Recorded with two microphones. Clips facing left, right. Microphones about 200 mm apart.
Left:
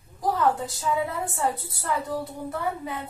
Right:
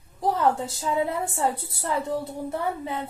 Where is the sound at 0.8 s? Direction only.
25° right (ahead or behind).